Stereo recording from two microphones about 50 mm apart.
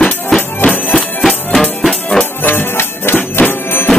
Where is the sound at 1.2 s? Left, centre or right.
Centre.